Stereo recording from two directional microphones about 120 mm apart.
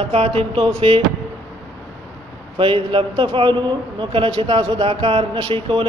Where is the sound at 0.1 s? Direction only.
55° right (ahead or behind).